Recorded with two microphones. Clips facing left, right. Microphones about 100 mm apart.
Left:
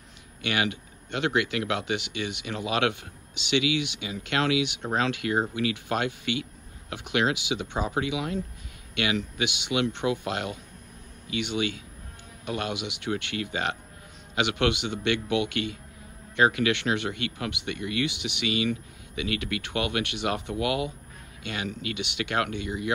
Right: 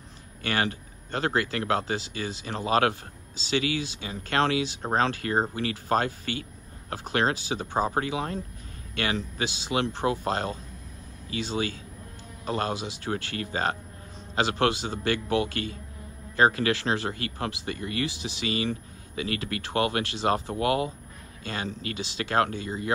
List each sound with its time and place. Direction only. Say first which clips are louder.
0.4 s speech: even; 40° right (ahead or behind)